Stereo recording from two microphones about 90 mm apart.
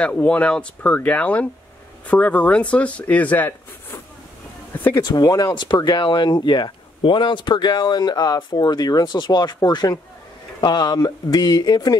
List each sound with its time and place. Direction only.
0.0 s speech: 15° left (ahead or behind)
5.0 s speech: 45° left (ahead or behind)